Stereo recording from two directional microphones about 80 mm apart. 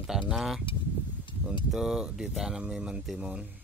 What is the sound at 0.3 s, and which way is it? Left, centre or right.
Speech, centre.